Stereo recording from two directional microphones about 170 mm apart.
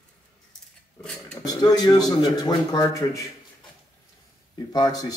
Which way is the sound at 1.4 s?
20° left (ahead or behind).